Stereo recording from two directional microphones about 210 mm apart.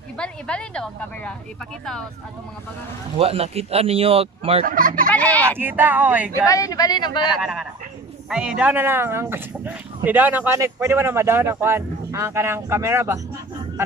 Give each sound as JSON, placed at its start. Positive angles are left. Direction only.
{"t": 0.2, "sound": "a woman's voice", "side_deg": 5}
{"t": 3.2, "sound": "speech", "side_deg": -25}
{"t": 4.6, "sound": "speech", "side_deg": -40}
{"t": 5.1, "sound": "a woman's voice", "side_deg": 5}
{"t": 5.6, "sound": "speech", "side_deg": -10}
{"t": 6.4, "sound": "a woman's voice", "side_deg": 15}
{"t": 7.2, "sound": "a woman's voice", "side_deg": -5}